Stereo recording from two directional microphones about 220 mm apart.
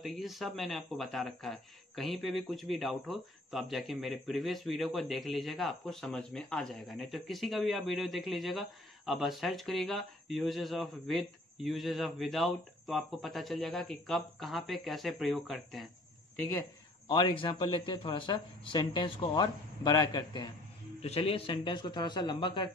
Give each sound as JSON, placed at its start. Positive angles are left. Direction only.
{"t": 0.0, "sound": "speech", "side_deg": 0}
{"t": 17.1, "sound": "a man's voice", "side_deg": 20}